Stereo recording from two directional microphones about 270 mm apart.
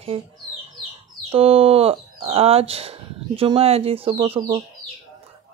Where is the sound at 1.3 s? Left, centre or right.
Right.